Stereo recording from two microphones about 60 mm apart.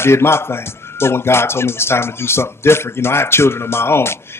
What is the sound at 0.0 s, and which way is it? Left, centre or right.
Speech, left.